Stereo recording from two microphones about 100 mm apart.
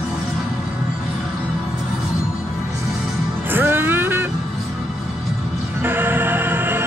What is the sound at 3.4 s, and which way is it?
Music, 20° right (ahead or behind).